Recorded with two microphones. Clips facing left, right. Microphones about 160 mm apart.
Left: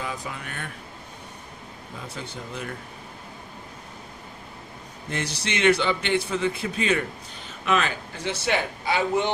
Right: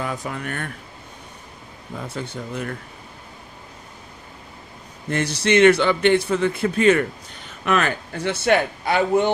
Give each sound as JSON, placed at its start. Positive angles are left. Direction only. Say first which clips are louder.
{"t": 0.0, "sound": "a man's voice", "louder": "right 5 dB", "side_deg": -50}
{"t": 2.1, "sound": "a man's voice", "louder": "right 6 dB", "side_deg": -50}
{"t": 5.1, "sound": "a man's voice", "louder": "right 11 dB", "side_deg": -55}